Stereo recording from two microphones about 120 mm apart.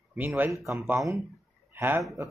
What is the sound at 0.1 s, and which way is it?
A man's voice, 15° right (ahead or behind).